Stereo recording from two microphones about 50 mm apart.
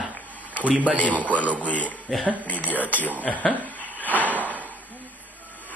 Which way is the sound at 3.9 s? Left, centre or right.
Left.